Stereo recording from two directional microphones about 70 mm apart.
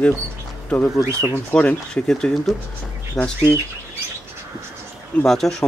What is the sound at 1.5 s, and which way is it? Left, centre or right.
Speech, centre.